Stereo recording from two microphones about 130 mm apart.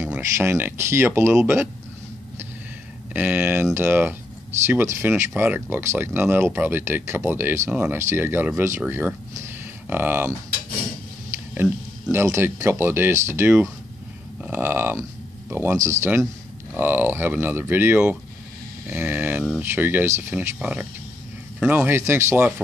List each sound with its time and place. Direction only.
0.0 s speech: 15° right (ahead or behind)
3.1 s speech: 15° right (ahead or behind)
11.5 s speech: 15° right (ahead or behind)